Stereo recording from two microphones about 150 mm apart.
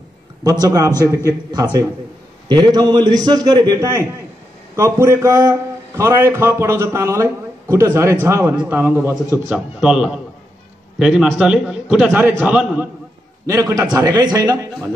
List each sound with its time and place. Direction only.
0.4 s a man's voice: 25° right (ahead or behind); by 12.1 s 5° right (ahead or behind)
12.1 s a man's voice: 15° right (ahead or behind)
13.5 s a man's voice: 20° right (ahead or behind)